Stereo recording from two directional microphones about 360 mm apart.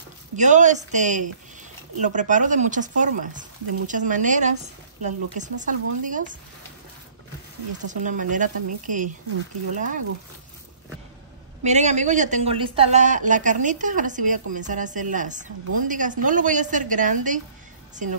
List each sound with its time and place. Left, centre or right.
0.4 s speech: centre
7.8 s speech: right
11.6 s speech: centre